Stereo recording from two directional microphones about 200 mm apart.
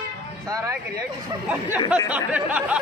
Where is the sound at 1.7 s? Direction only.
20° left (ahead or behind).